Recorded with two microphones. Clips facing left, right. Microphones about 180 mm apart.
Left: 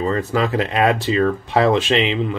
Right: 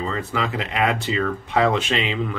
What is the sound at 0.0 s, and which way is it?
Speech, 40° left (ahead or behind).